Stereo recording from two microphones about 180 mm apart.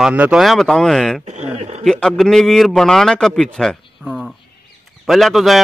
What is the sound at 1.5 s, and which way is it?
Speech, 40° right (ahead or behind).